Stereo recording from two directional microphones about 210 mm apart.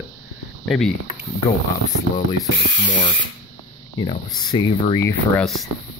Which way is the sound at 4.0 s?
20° left (ahead or behind).